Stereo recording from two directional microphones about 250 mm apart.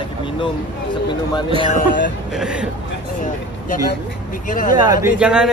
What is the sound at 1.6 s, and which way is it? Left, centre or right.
Speech, left.